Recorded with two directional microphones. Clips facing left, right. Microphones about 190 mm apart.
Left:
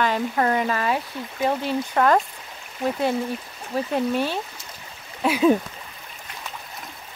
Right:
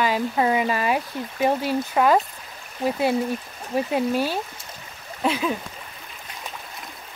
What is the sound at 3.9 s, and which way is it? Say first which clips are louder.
Speech: even; 5° right (ahead or behind).